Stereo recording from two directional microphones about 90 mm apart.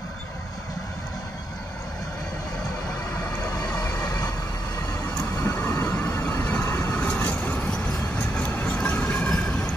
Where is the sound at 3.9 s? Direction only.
30° left (ahead or behind).